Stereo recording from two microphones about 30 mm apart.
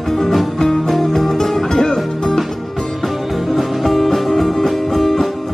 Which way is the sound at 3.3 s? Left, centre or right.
Centre.